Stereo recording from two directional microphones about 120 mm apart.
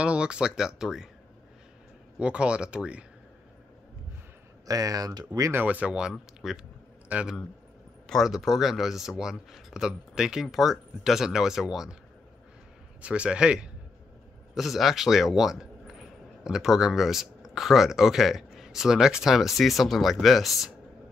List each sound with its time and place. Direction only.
0.0 s speech: 10° right (ahead or behind)
2.1 s speech: 10° right (ahead or behind)
4.6 s speech: 30° right (ahead or behind)
5.5 s speech: 15° right (ahead or behind)
13.0 s speech: 10° right (ahead or behind)